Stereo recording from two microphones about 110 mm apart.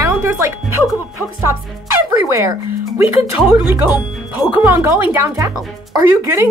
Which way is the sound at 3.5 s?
15° right (ahead or behind).